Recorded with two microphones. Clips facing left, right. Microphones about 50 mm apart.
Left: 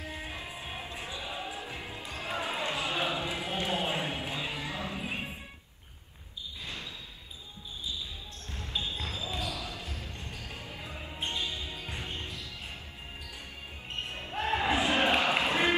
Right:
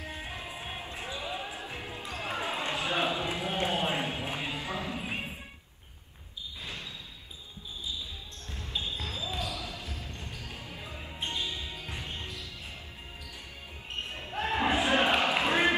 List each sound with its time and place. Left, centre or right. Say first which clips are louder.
0.0 s music: even; right
0.8 s basketball bounce: right 2 dB; right
4.6 s a sound: right 1 dB; right
8.5 s basketball bounce: even; left
11.2 s music: even; left
14.0 s basketball bounce: even; left
14.6 s crowd: right 2 dB; right
15.4 s a sound: right 2 dB; right